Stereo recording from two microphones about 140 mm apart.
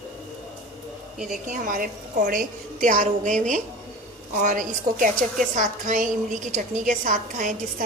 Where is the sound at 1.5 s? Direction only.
80° right.